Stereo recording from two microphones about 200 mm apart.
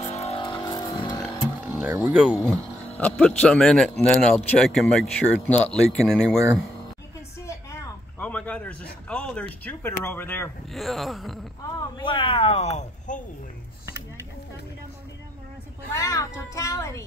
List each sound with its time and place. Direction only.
0.1 s a sound: 30° left (ahead or behind)
1.7 s speech: 10° right (ahead or behind)
3.0 s speech: 5° left (ahead or behind)
7.4 s a sound: 10° left (ahead or behind)
9.1 s speech: 5° left (ahead or behind)
12.0 s speech: 25° left (ahead or behind)
15.9 s a child's voice: 15° left (ahead or behind)